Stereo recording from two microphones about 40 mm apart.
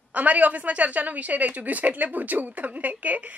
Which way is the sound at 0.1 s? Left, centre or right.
Right.